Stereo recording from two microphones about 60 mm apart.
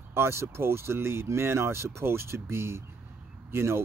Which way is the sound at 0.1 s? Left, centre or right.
Right.